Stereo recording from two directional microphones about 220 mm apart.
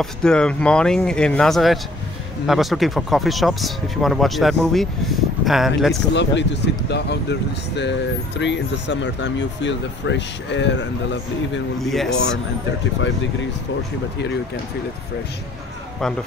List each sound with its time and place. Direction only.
0.0 s speech: 5° left (ahead or behind)
6.1 s speech: 55° left (ahead or behind)
11.8 s speech: centre (ahead or behind)